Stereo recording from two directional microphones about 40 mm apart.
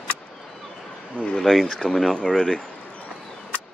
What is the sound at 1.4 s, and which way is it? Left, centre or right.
Speech, centre.